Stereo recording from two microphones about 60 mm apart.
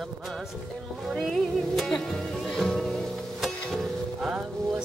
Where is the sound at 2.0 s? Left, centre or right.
Centre.